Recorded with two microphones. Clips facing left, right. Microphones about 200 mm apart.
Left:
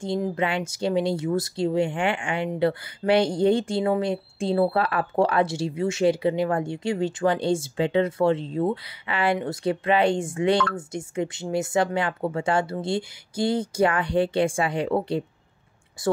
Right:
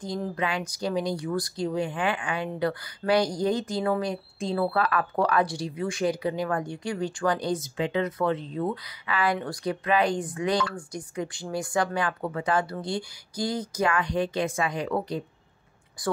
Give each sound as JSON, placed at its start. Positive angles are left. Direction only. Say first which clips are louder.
{"t": 0.0, "sound": "speech", "louder": "left 4 dB", "side_deg": 25}